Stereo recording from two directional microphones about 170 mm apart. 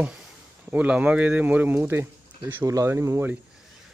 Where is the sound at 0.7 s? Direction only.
10° right (ahead or behind).